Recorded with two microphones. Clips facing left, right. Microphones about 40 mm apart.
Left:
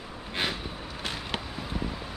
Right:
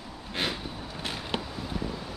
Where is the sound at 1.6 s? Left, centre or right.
Centre.